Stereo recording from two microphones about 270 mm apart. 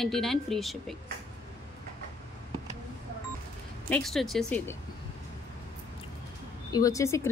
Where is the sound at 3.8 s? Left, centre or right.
Centre.